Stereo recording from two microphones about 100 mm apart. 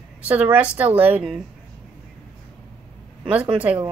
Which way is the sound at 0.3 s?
15° right (ahead or behind).